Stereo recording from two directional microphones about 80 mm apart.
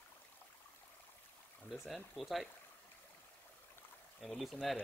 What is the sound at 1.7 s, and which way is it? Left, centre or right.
Speech, centre.